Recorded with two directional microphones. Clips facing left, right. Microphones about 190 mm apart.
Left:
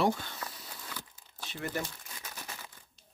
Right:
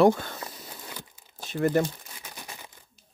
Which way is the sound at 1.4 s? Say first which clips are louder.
Right 13 dB; 45° right (ahead or behind).